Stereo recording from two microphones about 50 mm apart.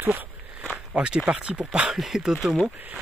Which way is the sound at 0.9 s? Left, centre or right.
Right.